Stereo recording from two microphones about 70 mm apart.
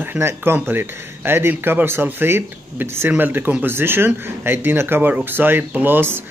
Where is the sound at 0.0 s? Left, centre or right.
Right.